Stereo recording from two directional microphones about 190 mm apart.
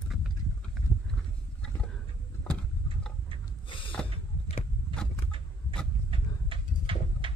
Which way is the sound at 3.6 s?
25° left (ahead or behind).